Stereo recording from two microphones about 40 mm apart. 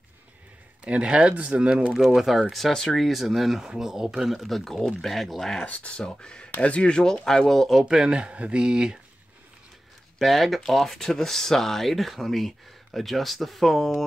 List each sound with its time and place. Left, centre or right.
0.8 s speech: right
2.0 s speech: centre
2.7 s speech: centre
3.0 s speech: centre
4.3 s speech: centre
5.7 s speech: left
5.9 s speech: left
6.5 s speech: left
7.2 s speech: centre
7.9 s speech: right
10.1 s speech: centre